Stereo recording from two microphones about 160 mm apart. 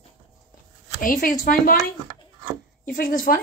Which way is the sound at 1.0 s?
55° left (ahead or behind).